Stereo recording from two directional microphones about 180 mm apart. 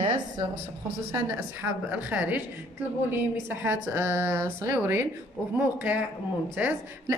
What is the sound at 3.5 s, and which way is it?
A woman's voice, 10° right (ahead or behind).